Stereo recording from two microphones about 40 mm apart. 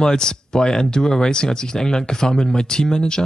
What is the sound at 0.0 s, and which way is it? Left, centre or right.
Speech, centre.